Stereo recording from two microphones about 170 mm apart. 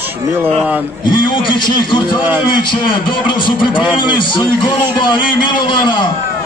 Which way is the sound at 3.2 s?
30° left (ahead or behind).